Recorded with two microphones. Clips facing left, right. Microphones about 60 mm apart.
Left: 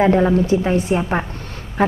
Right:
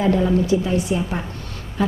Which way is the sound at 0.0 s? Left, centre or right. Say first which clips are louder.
Left 4 dB; left.